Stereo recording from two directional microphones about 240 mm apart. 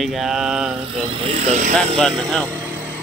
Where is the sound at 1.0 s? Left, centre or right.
Right.